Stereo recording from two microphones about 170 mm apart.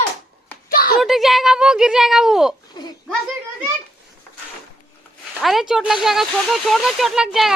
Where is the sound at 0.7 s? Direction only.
60° left (ahead or behind).